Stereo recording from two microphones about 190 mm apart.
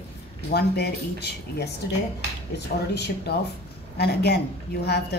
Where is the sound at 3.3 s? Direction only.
60° left (ahead or behind).